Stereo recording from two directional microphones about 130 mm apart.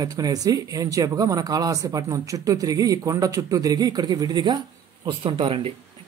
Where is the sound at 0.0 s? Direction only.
30° right (ahead or behind).